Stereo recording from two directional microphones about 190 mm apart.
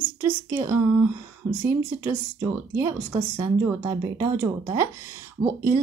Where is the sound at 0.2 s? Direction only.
15° right (ahead or behind).